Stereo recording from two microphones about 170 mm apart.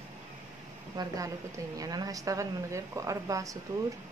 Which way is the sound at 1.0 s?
25° right (ahead or behind).